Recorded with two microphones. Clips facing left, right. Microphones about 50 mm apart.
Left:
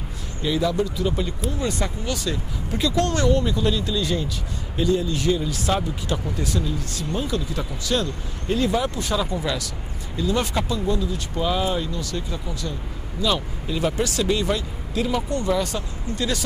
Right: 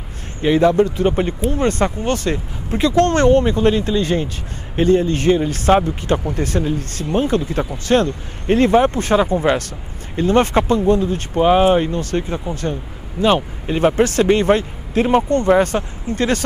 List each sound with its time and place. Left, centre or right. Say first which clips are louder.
0.4 s speech: right 9 dB; right